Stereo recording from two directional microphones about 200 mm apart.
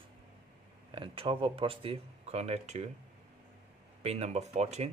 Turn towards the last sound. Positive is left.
turn(degrees=-30)  # may be behind; listen again after turning